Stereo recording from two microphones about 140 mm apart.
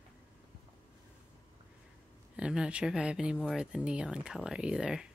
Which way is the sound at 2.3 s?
5° right (ahead or behind).